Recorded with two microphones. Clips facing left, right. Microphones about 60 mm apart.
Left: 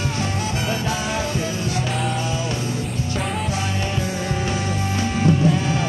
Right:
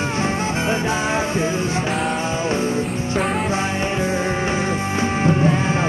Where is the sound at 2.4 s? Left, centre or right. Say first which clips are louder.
Right 5 dB; right.